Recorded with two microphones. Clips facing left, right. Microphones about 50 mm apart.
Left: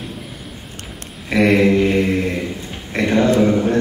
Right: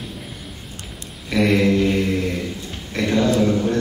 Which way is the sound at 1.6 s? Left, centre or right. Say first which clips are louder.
Left 3 dB; left.